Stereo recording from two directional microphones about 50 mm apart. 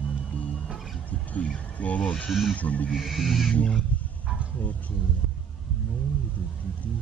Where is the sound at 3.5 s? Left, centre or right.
Left.